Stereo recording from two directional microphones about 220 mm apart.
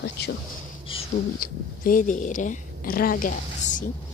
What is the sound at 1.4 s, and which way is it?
Speech, 40° left (ahead or behind).